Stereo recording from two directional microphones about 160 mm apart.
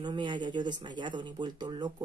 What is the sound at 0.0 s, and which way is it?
Speech, 30° right (ahead or behind).